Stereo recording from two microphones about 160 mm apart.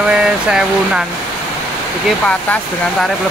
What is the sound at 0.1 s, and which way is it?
Speech, 5° right (ahead or behind).